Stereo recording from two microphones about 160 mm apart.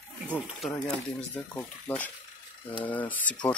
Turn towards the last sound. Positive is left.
turn(degrees=10)  # may be behind; listen again after turning